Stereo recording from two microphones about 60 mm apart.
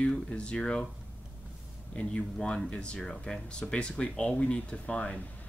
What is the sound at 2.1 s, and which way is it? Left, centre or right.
Speech, centre.